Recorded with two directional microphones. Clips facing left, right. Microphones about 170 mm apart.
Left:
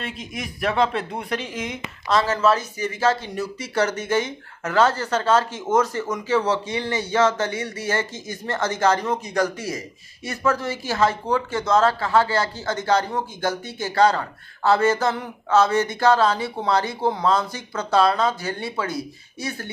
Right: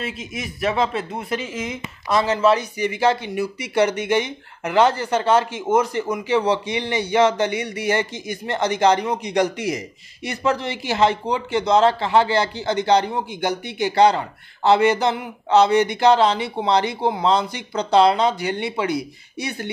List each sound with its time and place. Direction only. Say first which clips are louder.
0.0 s speech: right 2 dB; 5° right (ahead or behind)